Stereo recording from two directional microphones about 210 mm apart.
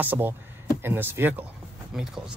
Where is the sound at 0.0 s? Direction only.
10° right (ahead or behind).